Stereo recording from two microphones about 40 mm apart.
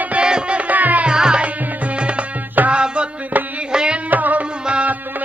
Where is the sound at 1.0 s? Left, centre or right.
Right.